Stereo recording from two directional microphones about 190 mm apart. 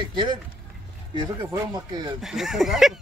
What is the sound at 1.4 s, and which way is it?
Speech, 20° right (ahead or behind).